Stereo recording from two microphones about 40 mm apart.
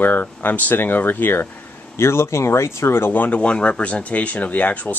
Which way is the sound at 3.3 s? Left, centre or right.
Left.